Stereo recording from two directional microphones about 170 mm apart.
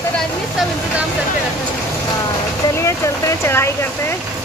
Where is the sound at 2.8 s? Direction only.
15° left (ahead or behind).